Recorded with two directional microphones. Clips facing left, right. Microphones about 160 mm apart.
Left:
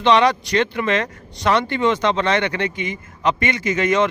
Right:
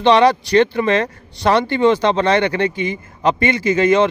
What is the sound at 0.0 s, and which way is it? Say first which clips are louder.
Speech: right 3 dB; 30° right (ahead or behind).